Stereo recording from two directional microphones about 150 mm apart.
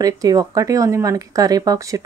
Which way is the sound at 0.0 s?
25° right (ahead or behind).